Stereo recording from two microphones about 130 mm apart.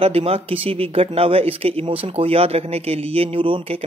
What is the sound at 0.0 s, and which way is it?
Speech, 50° right (ahead or behind).